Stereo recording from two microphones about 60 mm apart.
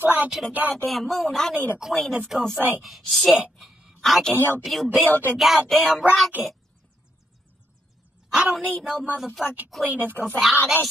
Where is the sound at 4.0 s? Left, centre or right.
Centre.